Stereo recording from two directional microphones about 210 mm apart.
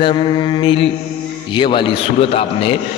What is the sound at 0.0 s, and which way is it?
A man's voice, 25° left (ahead or behind).